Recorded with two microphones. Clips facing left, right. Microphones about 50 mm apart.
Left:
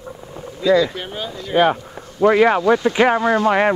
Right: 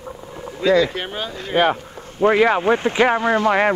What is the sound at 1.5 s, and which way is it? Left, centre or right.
Speech, centre.